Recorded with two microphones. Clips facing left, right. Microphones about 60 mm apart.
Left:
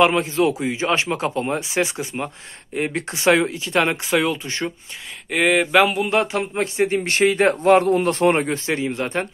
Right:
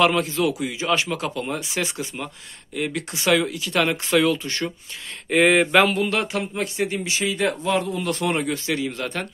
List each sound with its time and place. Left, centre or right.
0.0 s a man's voice: left
5.3 s speech: centre
6.0 s a man's voice: left
7.1 s speech: left
8.0 s a man's voice: left